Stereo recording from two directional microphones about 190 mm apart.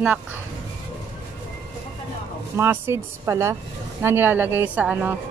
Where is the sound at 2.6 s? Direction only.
15° right (ahead or behind).